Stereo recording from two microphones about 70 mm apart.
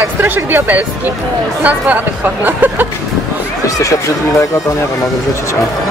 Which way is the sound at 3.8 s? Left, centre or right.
Left.